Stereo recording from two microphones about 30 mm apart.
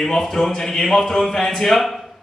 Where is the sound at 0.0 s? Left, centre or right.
Centre.